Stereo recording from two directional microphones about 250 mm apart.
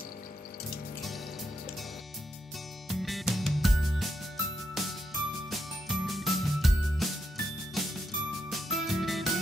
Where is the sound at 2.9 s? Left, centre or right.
Centre.